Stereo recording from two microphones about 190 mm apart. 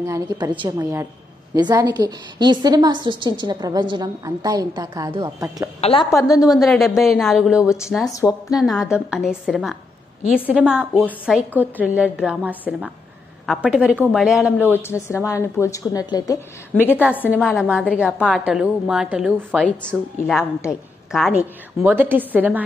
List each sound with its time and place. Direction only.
0.0 s a woman's voice: 15° right (ahead or behind)
5.8 s a woman's voice: 30° left (ahead or behind)
6.0 s a woman's voice: 15° left (ahead or behind)
6.6 s a woman's voice: centre (ahead or behind)
8.1 s a woman's voice: 20° left (ahead or behind)
8.9 s a woman's voice: 5° right (ahead or behind)
14.7 s a woman's voice: 15° left (ahead or behind)
17.3 s a woman's voice: 5° right (ahead or behind)
19.6 s a woman's voice: 5° left (ahead or behind)
21.1 s a woman's voice: centre (ahead or behind)